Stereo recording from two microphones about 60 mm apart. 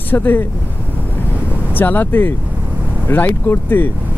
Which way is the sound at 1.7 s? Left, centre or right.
Left.